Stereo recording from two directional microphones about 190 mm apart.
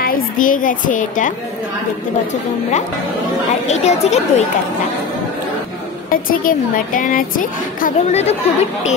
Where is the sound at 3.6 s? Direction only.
35° left (ahead or behind).